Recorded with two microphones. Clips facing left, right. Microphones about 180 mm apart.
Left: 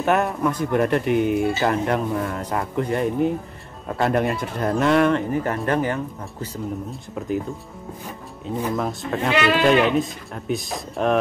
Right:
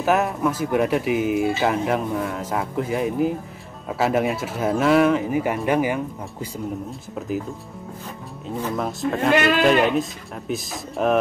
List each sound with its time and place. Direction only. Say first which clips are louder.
0.0 s speech: even; centre (ahead or behind)
6.9 s speech: left 1 dB; centre (ahead or behind)
8.7 s speech: right 1 dB; centre (ahead or behind)
9.3 s a man's voice: right 1 dB; 45° right (ahead or behind)
9.6 s speech: even; centre (ahead or behind)